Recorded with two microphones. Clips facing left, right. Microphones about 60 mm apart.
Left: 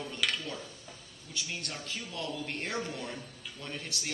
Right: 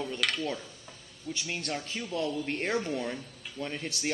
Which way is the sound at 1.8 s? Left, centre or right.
Right.